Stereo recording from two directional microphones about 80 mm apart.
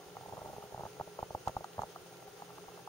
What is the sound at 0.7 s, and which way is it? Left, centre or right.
Stomach rumble, left.